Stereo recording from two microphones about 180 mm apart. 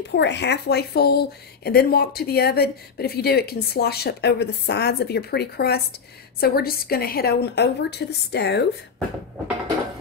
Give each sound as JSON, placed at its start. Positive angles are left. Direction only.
{"t": 0.0, "sound": "speech", "side_deg": 75}